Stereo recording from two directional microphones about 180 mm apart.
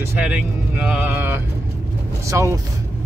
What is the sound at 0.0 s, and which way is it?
Speech, 10° right (ahead or behind).